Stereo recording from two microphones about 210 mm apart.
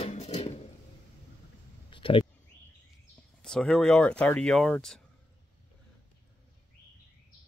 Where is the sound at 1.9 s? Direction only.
25° left (ahead or behind).